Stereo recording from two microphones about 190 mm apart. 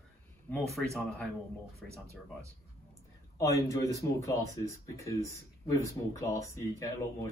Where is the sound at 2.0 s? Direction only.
15° right (ahead or behind).